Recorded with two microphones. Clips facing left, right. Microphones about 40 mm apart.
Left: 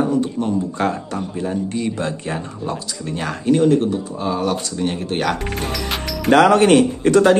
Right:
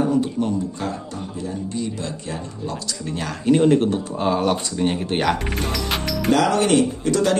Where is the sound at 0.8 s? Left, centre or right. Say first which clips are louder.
Left 7 dB; left.